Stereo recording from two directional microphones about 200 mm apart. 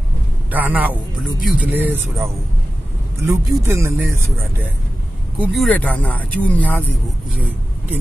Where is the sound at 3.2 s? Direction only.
15° right (ahead or behind).